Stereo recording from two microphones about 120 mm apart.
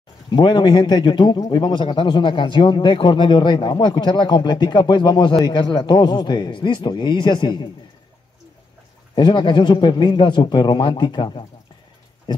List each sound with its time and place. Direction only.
0.3 s speech: 40° left (ahead or behind)
9.1 s speech: 40° left (ahead or behind)